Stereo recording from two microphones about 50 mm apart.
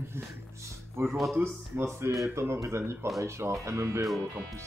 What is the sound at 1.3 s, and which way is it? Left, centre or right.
Speech, right.